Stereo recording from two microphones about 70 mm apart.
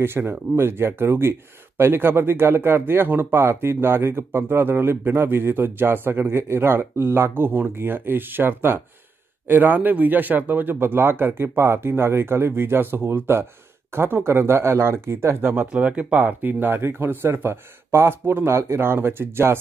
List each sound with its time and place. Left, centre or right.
0.0 s speech: right
15.6 s speech: centre; by 19.5 s right